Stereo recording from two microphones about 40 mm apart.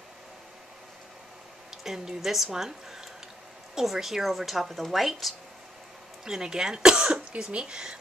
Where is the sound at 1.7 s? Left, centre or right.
Centre.